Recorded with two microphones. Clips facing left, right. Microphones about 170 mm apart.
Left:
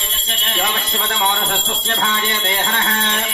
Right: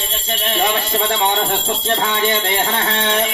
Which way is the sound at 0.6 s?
30° right (ahead or behind).